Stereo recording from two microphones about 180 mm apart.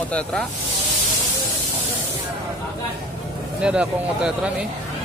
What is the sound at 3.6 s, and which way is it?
Speech, 5° right (ahead or behind).